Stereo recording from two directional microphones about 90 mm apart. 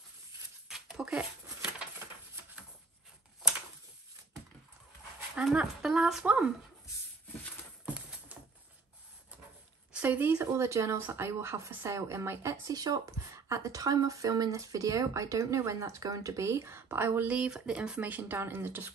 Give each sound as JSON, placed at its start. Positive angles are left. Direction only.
{"t": 0.7, "sound": "a sound", "side_deg": -5}
{"t": 5.3, "sound": "speech", "side_deg": -10}
{"t": 9.9, "sound": "speech", "side_deg": -20}
{"t": 12.7, "sound": "speech", "side_deg": -45}